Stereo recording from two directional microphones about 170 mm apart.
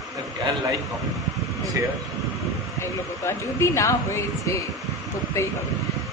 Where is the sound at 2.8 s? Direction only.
15° left (ahead or behind).